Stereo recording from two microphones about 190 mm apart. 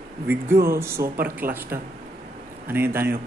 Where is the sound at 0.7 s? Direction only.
15° right (ahead or behind).